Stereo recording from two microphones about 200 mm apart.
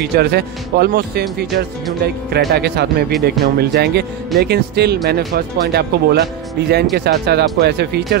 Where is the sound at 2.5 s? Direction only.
55° right (ahead or behind).